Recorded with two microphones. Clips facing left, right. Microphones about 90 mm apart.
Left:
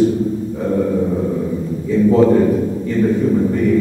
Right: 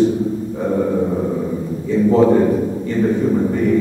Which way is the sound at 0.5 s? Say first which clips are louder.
Even; 10° right (ahead or behind).